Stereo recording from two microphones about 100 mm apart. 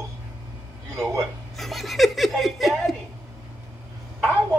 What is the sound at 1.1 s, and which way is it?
Speech, centre (ahead or behind).